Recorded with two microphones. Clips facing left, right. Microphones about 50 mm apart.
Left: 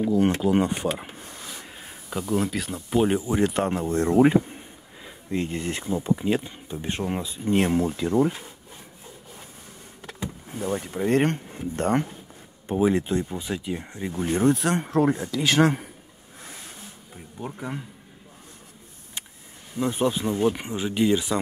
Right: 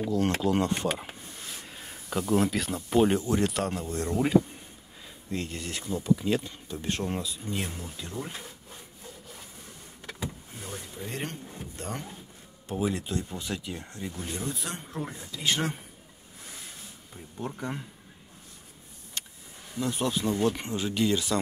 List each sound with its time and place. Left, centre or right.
0.1 s speech: centre
1.7 s speech: centre
7.4 s speech: left
10.6 s speech: left
12.6 s speech: left
13.3 s speech: centre; by 14.5 s left
14.5 s speech: left
17.4 s speech: centre
19.8 s speech: left